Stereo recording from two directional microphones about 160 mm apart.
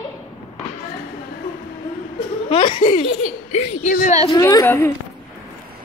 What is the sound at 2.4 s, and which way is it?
Laughter, 35° left (ahead or behind).